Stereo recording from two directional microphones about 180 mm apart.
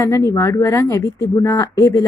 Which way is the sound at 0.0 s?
15° left (ahead or behind).